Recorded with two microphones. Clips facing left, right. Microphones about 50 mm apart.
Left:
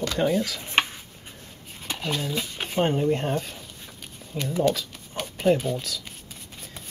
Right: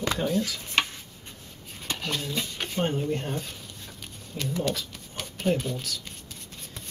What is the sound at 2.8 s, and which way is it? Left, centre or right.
Speech, left.